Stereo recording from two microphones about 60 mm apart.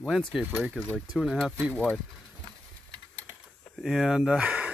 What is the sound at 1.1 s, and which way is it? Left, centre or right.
Speech, centre.